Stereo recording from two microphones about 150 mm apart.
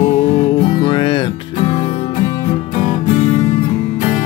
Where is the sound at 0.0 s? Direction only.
45° left (ahead or behind).